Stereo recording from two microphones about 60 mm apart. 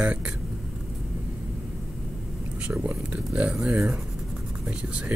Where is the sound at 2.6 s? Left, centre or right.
Right.